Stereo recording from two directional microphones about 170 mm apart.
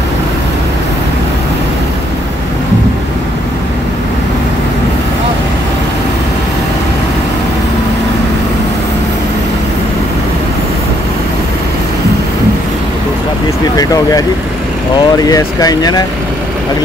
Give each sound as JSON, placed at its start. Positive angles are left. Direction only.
{"t": 13.7, "sound": "speech", "side_deg": 20}